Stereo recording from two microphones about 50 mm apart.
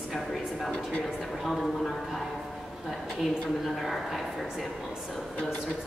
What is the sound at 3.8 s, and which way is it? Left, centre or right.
Speech, centre.